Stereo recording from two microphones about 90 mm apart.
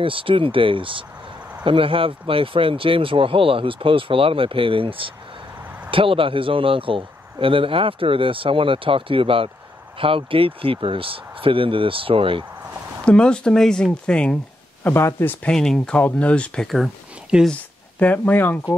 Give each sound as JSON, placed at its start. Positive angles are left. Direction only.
{"t": 0.0, "sound": "a man's voice", "side_deg": -75}
{"t": 13.0, "sound": "speech", "side_deg": 10}
{"t": 15.4, "sound": "speech", "side_deg": 5}
{"t": 16.6, "sound": "speech", "side_deg": 0}
{"t": 17.5, "sound": "speech", "side_deg": 20}